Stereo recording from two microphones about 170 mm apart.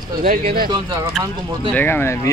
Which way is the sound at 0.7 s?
25° right (ahead or behind).